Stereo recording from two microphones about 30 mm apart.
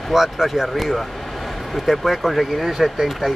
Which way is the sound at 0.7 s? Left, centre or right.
Centre.